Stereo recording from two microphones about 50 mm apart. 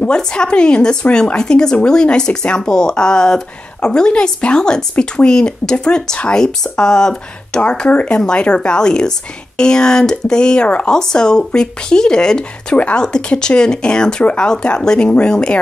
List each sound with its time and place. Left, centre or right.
0.0 s speech: centre
12.7 s speech: left